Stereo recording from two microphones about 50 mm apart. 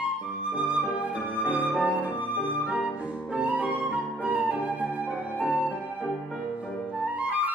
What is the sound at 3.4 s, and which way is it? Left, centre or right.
Flute, right.